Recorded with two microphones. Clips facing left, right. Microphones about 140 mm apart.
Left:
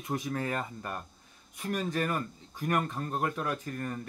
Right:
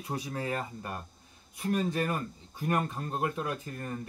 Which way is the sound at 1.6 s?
30° right (ahead or behind).